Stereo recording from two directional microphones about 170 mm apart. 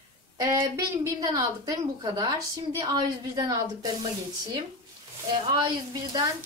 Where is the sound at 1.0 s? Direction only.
20° right (ahead or behind).